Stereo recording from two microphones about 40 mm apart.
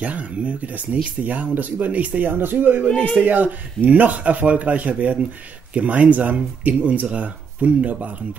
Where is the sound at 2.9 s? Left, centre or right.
Left.